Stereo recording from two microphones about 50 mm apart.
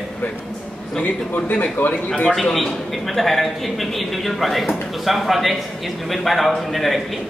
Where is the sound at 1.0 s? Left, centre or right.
Left.